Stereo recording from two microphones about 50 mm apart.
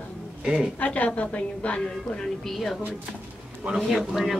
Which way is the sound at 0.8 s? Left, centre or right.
Left.